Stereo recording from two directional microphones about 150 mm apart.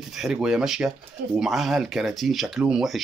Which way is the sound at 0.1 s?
5° right (ahead or behind).